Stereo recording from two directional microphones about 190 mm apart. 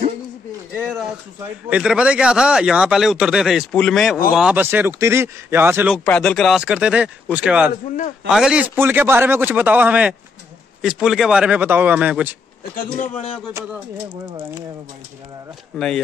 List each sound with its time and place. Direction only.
0.7 s a sound: 5° left (ahead or behind)
1.7 s a man's voice: 5° right (ahead or behind)
6.0 s a man's voice: 5° left (ahead or behind)
12.7 s a man's voice: 40° left (ahead or behind)
14.0 s speech: 25° right (ahead or behind)
15.7 s speech: centre (ahead or behind)